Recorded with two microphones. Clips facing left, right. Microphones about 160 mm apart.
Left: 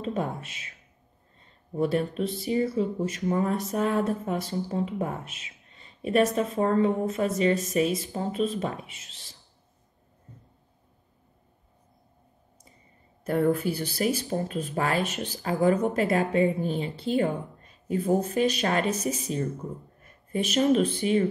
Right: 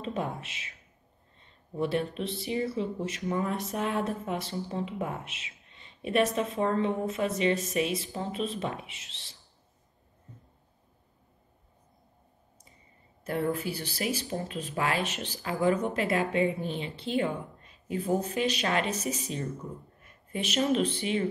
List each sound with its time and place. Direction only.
0.0 s speech: 40° left (ahead or behind)
1.8 s speech: 40° left (ahead or behind)
13.2 s speech: 45° left (ahead or behind)
20.0 s a sound: 40° left (ahead or behind)
20.7 s speech: 45° left (ahead or behind)